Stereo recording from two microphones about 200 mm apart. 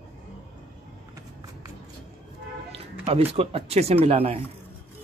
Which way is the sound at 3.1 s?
30° right (ahead or behind).